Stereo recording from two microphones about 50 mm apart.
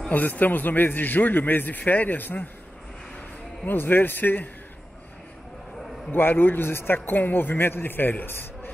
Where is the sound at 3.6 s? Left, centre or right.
Left.